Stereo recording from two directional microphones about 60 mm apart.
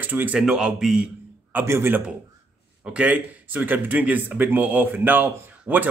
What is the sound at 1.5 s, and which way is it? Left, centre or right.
Speech, right.